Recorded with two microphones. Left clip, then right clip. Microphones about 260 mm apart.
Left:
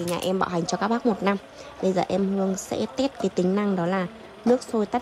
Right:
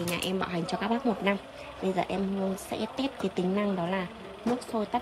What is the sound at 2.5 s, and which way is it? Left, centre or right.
Speech, left.